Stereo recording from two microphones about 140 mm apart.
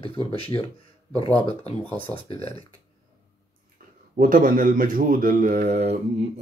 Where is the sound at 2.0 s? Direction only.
45° left (ahead or behind).